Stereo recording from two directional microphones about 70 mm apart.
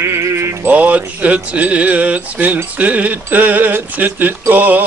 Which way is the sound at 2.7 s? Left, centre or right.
Right.